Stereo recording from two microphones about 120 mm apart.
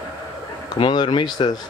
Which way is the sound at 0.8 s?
40° left (ahead or behind).